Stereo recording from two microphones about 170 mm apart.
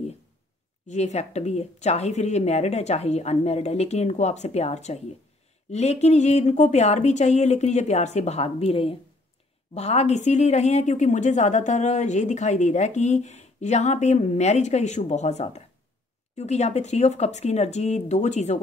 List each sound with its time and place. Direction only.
0.8 s a woman's voice: 45° left (ahead or behind)